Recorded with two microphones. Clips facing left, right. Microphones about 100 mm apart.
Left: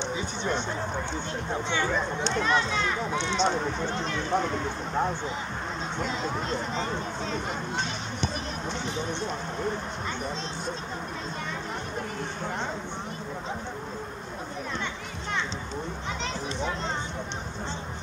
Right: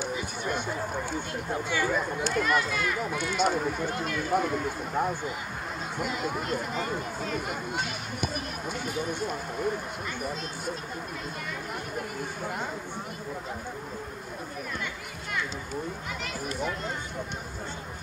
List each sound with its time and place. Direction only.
0.4 s a sound: 5° right (ahead or behind)
1.5 s speech: 25° left (ahead or behind)
3.3 s speech: 5° right (ahead or behind)
4.9 s speech: 25° left (ahead or behind)
5.9 s speech: 10° right (ahead or behind)